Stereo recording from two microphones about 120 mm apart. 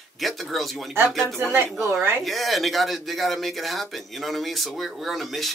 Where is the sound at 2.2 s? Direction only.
Centre (ahead or behind).